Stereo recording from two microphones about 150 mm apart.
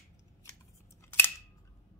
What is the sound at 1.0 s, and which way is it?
Scissors, 15° left (ahead or behind).